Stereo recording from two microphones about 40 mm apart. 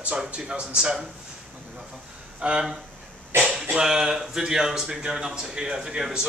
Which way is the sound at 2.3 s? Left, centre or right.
Right.